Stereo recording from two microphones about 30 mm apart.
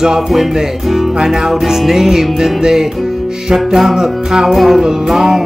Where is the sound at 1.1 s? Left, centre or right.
Centre.